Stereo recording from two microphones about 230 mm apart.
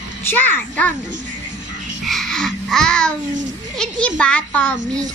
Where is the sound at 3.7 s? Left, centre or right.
Centre.